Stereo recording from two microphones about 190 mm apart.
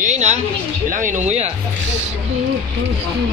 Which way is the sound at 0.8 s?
45° right (ahead or behind).